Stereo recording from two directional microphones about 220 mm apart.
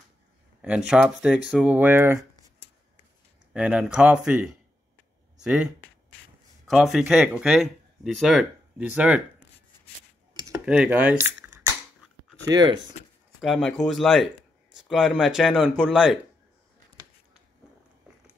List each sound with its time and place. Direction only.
0.6 s speech: 5° right (ahead or behind)
3.5 s speech: 5° right (ahead or behind)
6.7 s speech: centre (ahead or behind)
10.6 s speech: 5° right (ahead or behind)
12.4 s speech: 20° right (ahead or behind)
13.4 s speech: centre (ahead or behind)